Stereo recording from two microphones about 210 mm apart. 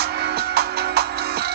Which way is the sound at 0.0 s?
50° right (ahead or behind).